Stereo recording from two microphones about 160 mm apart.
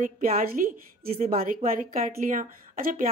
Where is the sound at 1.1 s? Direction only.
40° right (ahead or behind).